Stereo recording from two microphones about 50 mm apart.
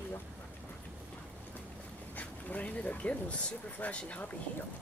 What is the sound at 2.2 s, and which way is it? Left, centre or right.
Speech, left.